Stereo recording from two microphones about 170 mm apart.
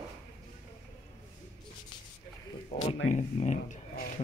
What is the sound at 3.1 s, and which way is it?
Speech, 45° left (ahead or behind).